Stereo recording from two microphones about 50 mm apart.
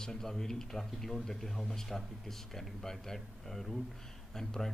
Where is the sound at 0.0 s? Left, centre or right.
Centre.